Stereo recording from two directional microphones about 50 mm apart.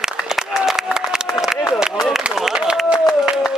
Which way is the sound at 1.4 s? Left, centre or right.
Centre.